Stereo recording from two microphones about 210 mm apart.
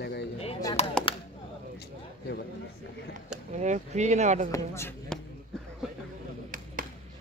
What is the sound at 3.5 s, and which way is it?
Speech, 35° right (ahead or behind).